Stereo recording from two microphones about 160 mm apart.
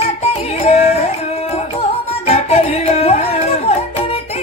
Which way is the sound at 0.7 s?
40° left (ahead or behind).